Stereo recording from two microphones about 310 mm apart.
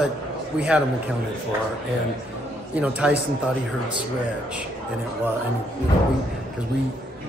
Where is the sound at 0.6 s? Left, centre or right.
Centre.